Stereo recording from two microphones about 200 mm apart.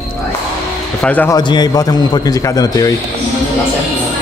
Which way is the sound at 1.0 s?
10° left (ahead or behind).